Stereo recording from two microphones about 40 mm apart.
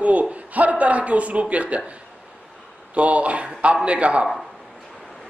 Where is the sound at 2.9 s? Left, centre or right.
Right.